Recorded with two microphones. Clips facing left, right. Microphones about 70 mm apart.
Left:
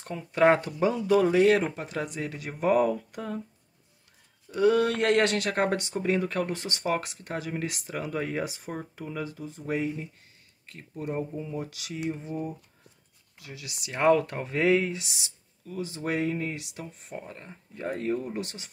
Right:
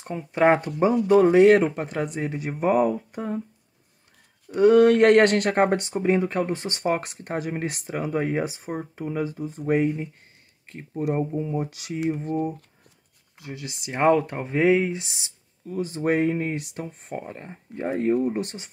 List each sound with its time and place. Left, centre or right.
0.0 s speech: right
0.9 s speech: right
1.2 s speech: right
2.7 s speech: centre
4.6 s speech: right
4.8 s speech: right
5.6 s speech: right
12.2 s speech: right
13.4 s speech: right